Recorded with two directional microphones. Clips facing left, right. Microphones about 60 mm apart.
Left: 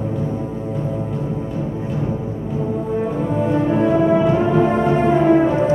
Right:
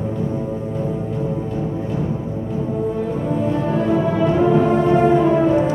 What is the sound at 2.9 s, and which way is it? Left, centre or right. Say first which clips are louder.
Music: left 1 dB; left.